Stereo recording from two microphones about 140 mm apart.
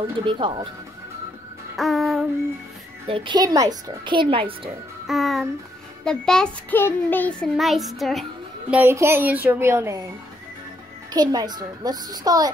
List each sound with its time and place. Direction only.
0.2 s speech: 35° right (ahead or behind)
1.8 s music: centre (ahead or behind)
3.1 s speech: 35° right (ahead or behind)
5.0 s a child's voice: centre (ahead or behind)
8.7 s speech: 20° right (ahead or behind)
11.1 s a child's voice: 30° right (ahead or behind)